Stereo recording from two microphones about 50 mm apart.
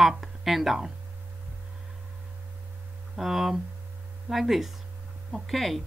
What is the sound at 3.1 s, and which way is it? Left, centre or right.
Speech, centre.